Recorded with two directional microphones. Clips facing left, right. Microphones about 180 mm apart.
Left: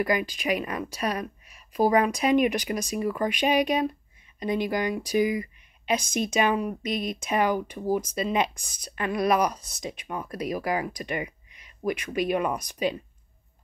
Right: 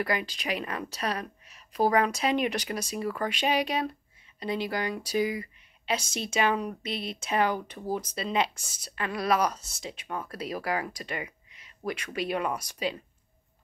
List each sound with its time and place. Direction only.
0.0 s speech: 15° left (ahead or behind)